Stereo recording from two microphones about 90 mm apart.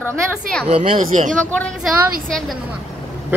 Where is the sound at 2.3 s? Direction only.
5° left (ahead or behind).